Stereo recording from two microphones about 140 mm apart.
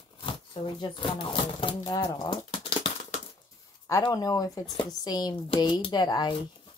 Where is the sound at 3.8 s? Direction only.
25° left (ahead or behind).